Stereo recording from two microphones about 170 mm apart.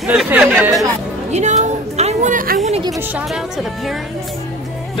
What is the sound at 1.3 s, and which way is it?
A woman's voice, 40° right (ahead or behind).